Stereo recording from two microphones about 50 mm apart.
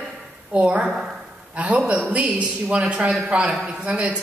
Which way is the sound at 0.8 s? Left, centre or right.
Centre.